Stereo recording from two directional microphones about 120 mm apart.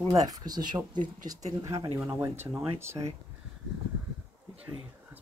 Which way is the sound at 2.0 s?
15° right (ahead or behind).